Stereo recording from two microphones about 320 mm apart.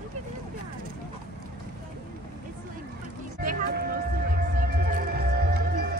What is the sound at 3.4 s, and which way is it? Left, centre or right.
Music, right.